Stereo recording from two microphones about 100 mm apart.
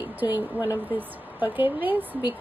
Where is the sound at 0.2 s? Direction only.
20° right (ahead or behind).